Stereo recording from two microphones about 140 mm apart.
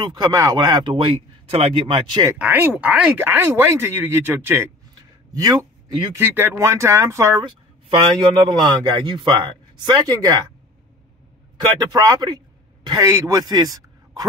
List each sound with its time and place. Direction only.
0.1 s speech: 30° right (ahead or behind)
2.3 s speech: 10° right (ahead or behind); by 6.0 s 25° right (ahead or behind)
6.1 s speech: 15° right (ahead or behind)
7.4 s speech: 35° right (ahead or behind)
11.8 s a man's voice: 30° right (ahead or behind)